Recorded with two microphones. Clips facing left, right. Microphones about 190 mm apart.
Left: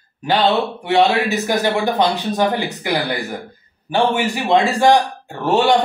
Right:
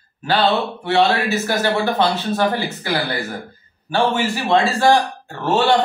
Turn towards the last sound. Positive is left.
turn(degrees=15)  # may be behind; listen again after turning